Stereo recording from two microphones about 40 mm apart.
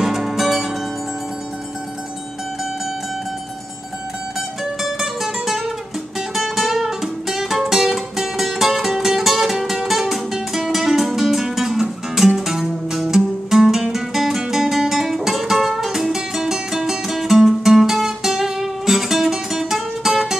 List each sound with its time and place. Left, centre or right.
0.0 s music: centre
4.8 s music: centre